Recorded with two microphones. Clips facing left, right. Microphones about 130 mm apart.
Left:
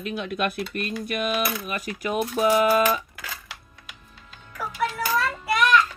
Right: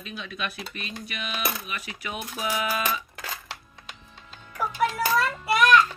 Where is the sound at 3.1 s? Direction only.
30° right (ahead or behind).